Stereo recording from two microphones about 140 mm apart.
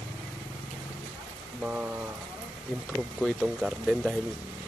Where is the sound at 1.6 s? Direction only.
10° right (ahead or behind).